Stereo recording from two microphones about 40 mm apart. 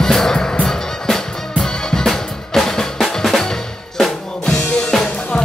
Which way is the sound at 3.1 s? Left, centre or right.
Centre.